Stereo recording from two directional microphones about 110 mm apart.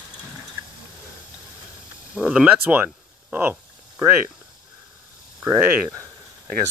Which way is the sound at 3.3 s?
15° right (ahead or behind).